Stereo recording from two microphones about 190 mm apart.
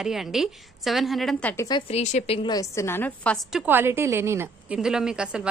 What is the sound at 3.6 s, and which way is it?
A woman's voice, 10° right (ahead or behind).